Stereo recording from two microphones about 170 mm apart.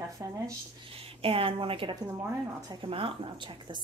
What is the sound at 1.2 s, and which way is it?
A woman's voice, 30° right (ahead or behind).